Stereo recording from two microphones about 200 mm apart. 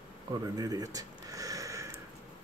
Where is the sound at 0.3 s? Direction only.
20° right (ahead or behind).